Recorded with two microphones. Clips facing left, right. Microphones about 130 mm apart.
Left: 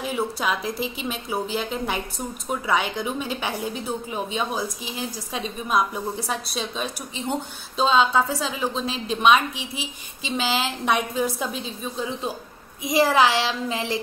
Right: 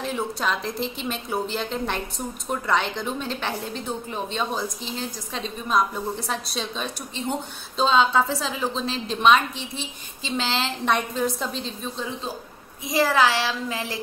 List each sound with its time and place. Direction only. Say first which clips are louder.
0.0 s a woman's voice: left 1 dB; 5° left (ahead or behind)